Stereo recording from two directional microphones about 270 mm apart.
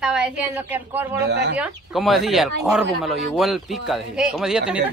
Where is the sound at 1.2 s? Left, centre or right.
Right.